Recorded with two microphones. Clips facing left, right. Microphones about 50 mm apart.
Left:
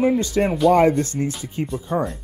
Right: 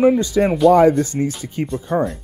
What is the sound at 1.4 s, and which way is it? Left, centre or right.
Speech, right.